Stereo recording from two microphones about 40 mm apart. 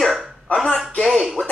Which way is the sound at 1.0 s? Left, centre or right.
Centre.